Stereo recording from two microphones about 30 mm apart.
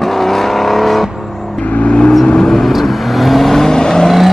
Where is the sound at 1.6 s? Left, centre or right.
Left.